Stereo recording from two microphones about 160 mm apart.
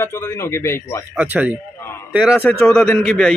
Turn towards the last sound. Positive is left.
turn(degrees=5)  # may be behind; listen again after turning